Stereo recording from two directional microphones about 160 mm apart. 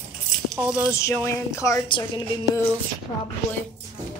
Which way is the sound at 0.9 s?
15° left (ahead or behind).